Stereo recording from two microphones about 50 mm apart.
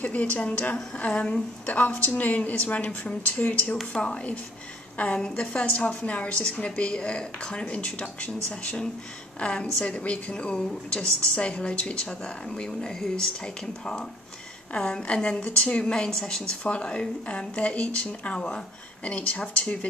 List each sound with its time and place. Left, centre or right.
0.0 s a woman's voice: left
1.7 s a woman's voice: left
3.9 s a woman's voice: left
16.6 s a woman's voice: left